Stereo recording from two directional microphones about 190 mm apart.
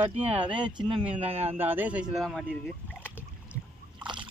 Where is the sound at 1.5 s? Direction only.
10° right (ahead or behind).